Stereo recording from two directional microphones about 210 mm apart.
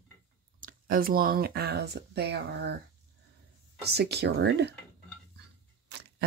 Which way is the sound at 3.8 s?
50° right (ahead or behind).